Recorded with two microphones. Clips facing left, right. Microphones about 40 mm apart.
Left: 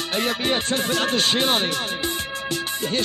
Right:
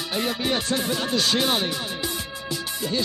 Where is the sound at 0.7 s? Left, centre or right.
Left.